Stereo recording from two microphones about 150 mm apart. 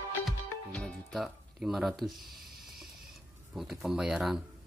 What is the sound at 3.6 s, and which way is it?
Speech, 5° right (ahead or behind).